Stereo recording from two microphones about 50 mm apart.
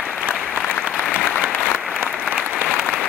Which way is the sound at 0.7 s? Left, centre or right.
Left.